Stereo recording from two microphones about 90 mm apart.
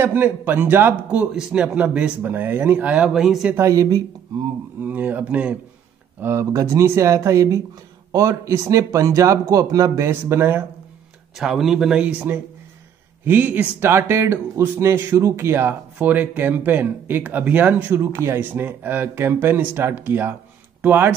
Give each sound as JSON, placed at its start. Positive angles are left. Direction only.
{"t": 0.0, "sound": "speech", "side_deg": -20}
{"t": 1.2, "sound": "speech", "side_deg": -10}
{"t": 2.9, "sound": "speech", "side_deg": -5}
{"t": 3.5, "sound": "speech", "side_deg": -35}
{"t": 4.8, "sound": "speech", "side_deg": -20}
{"t": 6.2, "sound": "speech", "side_deg": -35}
{"t": 11.3, "sound": "speech", "side_deg": 0}
{"t": 13.2, "sound": "speech", "side_deg": -20}